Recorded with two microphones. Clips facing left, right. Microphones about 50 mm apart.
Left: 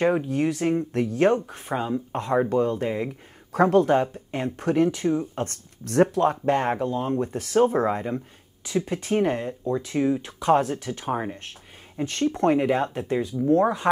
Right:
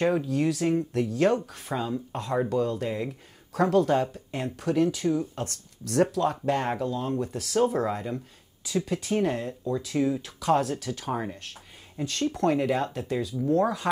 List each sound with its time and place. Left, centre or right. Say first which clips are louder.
0.2 s speech: left 2 dB; left
5.3 s speech: left 4 dB; left
6.4 s speech: left 4 dB; left
9.2 s speech: left 3 dB; centre